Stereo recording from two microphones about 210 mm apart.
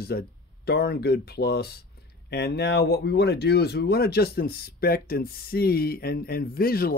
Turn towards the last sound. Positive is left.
turn(degrees=45)  # may be behind; listen again after turning